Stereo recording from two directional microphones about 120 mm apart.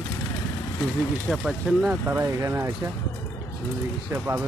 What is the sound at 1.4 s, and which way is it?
Speech, 5° right (ahead or behind).